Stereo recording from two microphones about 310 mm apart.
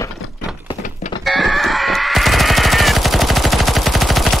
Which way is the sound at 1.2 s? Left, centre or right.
Centre.